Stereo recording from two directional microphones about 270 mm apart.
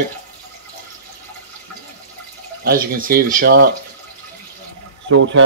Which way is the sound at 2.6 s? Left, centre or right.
Right.